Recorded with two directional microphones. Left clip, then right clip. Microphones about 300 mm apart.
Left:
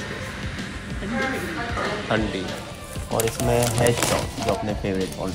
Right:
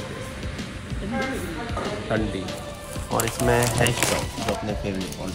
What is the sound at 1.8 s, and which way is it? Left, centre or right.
Speech, centre.